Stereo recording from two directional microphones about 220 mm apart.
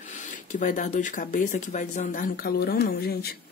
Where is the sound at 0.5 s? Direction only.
35° left (ahead or behind).